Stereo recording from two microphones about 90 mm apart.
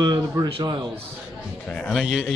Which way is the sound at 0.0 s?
45° right (ahead or behind).